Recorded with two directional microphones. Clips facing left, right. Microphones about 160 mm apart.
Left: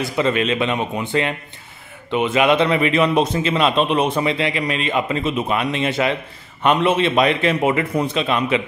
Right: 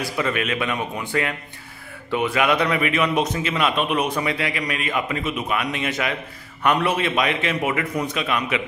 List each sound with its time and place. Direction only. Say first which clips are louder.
0.0 s a man's voice: left 5 dB; 25° left (ahead or behind)